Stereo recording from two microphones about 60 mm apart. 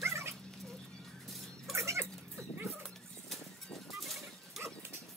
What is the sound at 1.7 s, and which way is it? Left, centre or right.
Cat, right.